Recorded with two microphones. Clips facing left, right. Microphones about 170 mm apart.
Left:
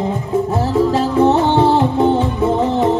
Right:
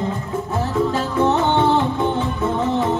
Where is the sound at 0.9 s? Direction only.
35° left (ahead or behind).